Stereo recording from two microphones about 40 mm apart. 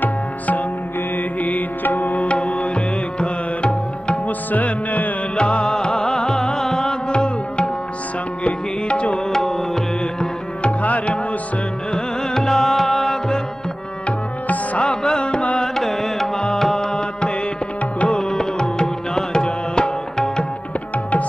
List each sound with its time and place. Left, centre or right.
0.0 s music: left
2.1 s music: left
4.3 s music: left
5.3 s music: left
9.3 s tabla: centre
10.6 s tabla: left
11.9 s music: centre
14.0 s music: left
14.8 s carnatic music: centre
15.6 s music: centre
17.9 s tabla: left